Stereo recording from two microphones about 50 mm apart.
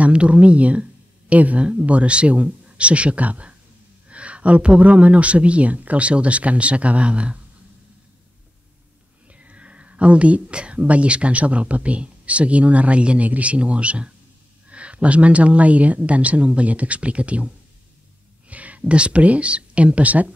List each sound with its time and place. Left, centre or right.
0.0 s speech: right
9.3 s speech: right
18.5 s speech: right